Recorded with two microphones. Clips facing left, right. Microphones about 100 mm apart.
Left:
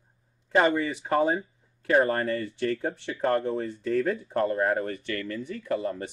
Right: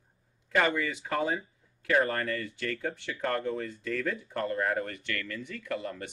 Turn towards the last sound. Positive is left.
turn(degrees=30)  # may be behind; listen again after turning